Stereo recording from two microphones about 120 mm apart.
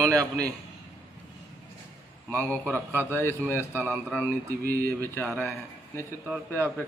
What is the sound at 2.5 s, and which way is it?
Speech, 15° right (ahead or behind).